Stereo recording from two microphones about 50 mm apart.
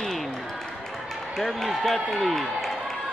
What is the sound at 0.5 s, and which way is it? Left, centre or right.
Basketball bounce, centre.